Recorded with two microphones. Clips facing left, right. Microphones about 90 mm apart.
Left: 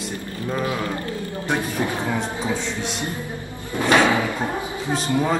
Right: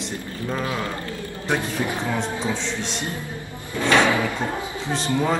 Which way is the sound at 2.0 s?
10° left (ahead or behind).